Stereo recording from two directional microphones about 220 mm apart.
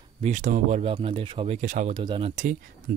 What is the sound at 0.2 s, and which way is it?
Speech, 35° right (ahead or behind).